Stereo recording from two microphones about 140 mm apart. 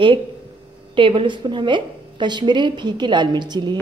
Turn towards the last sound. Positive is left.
turn(degrees=-30)  # may be behind; listen again after turning